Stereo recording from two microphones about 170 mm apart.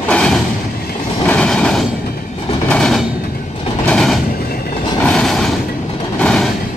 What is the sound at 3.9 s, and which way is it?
Train, centre (ahead or behind).